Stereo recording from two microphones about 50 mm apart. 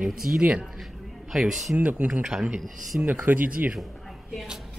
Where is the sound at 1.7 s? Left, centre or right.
Right.